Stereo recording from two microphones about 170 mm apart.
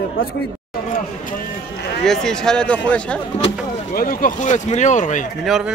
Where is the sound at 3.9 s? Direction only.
55° left (ahead or behind).